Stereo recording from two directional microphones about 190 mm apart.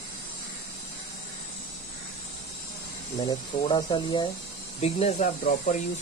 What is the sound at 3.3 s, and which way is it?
Speech, 25° left (ahead or behind).